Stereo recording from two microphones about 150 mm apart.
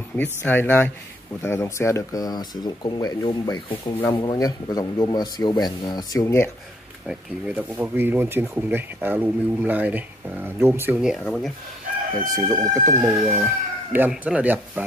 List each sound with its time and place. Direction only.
0.2 s speech: 10° left (ahead or behind)
7.1 s speech: 10° right (ahead or behind)
11.2 s speech: 5° left (ahead or behind)
12.2 s speech: 20° right (ahead or behind)